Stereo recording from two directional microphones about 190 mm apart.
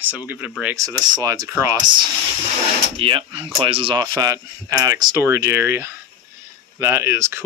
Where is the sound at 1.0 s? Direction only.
20° right (ahead or behind).